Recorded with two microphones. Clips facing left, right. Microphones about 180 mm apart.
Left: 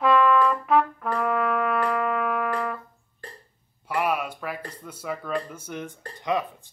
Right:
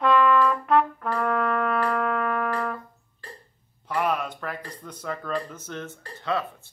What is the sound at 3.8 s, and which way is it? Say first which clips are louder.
Speech: even; 10° left (ahead or behind).